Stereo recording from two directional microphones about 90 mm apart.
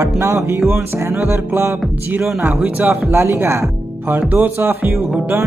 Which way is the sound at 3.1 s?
25° right (ahead or behind).